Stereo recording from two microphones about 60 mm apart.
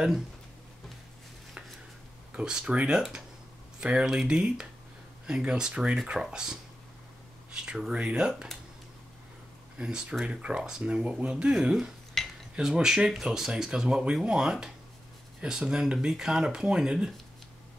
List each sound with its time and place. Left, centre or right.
2.3 s speech: centre
9.8 s speech: centre
12.2 s cutlery: centre
12.5 s speech: centre